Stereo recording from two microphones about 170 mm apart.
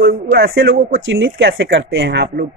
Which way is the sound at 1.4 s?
85° right.